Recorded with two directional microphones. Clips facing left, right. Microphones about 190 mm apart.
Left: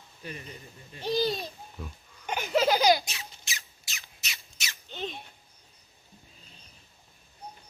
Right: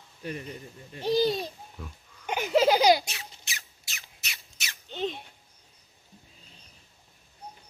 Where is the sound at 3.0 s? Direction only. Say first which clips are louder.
Even; 60° right (ahead or behind).